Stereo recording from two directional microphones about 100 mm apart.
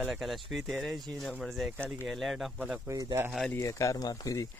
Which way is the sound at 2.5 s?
15° right (ahead or behind).